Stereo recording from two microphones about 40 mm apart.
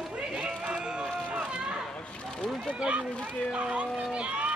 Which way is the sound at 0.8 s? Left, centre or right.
Centre.